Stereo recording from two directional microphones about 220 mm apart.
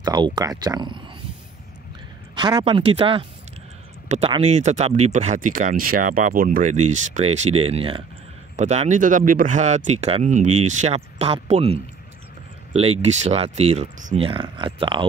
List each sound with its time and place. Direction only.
0.0 s speech: 20° right (ahead or behind)
2.3 s speech: 20° right (ahead or behind)